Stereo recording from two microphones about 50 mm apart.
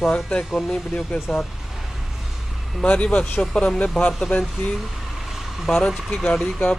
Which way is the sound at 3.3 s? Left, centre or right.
Centre.